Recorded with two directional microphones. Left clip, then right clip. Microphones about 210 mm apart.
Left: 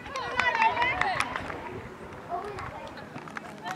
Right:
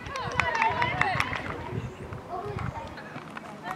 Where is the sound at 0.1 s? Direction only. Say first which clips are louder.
Left 1 dB; centre (ahead or behind).